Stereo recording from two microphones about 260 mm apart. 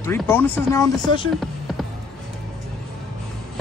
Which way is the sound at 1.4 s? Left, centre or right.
Centre.